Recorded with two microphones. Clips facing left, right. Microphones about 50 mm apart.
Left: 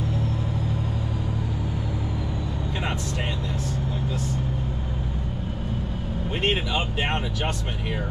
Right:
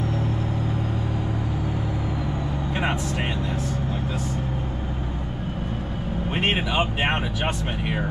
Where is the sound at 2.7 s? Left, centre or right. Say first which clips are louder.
Right 5 dB; right.